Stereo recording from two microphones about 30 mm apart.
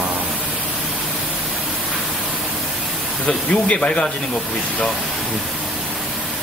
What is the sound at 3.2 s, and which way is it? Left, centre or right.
Speech, left.